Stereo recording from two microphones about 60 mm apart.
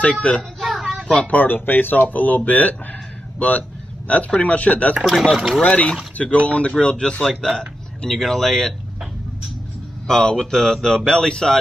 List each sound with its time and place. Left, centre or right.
0.0 s speech: left
0.7 s a sound: centre
1.2 s speech: left
5.0 s speech: centre
5.6 s speech: left
10.0 s speech: centre